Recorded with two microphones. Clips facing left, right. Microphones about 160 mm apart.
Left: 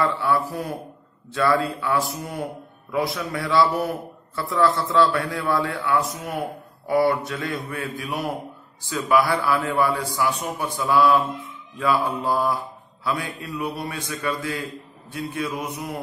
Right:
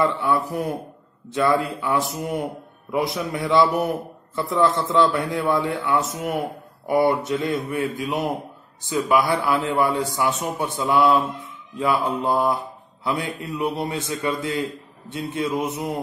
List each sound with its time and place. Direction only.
0.0 s a man's voice: 20° right (ahead or behind)